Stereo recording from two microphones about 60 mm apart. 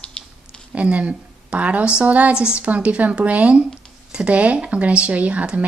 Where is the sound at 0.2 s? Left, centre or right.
Left.